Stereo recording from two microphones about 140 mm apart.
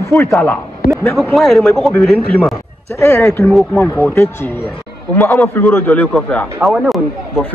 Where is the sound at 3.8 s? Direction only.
20° left (ahead or behind).